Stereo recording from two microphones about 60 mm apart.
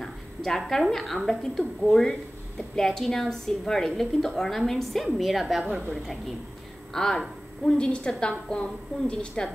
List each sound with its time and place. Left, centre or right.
0.0 s a woman's voice: centre
5.6 s a woman's voice: right
6.9 s a woman's voice: centre